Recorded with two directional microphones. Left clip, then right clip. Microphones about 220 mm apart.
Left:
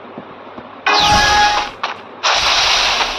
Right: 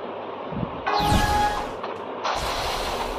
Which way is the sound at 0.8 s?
40° left (ahead or behind).